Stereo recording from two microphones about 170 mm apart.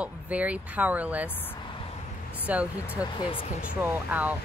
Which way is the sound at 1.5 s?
30° left (ahead or behind).